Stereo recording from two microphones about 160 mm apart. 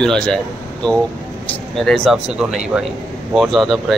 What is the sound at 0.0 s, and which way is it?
Speech, 5° left (ahead or behind).